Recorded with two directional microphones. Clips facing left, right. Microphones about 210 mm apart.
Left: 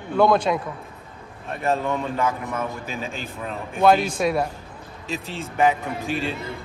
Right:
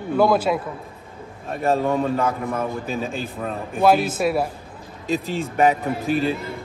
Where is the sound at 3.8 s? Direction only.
5° right (ahead or behind).